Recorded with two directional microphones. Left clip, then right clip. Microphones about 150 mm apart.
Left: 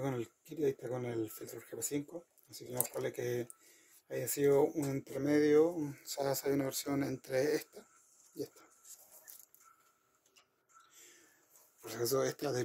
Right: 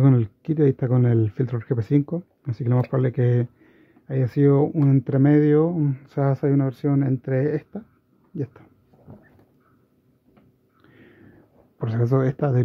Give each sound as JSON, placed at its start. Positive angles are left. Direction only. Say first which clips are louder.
{"t": 0.0, "sound": "speech", "louder": "right 16 dB", "side_deg": -55}
{"t": 11.8, "sound": "speech", "louder": "right 10 dB", "side_deg": -45}